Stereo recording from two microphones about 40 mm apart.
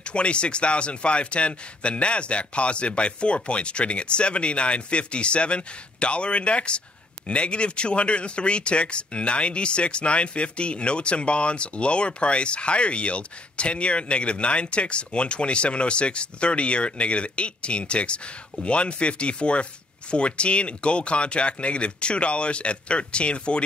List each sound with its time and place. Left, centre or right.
0.0 s speech: left